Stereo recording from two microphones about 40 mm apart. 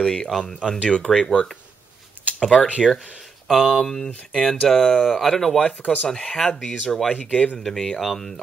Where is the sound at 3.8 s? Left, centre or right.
Centre.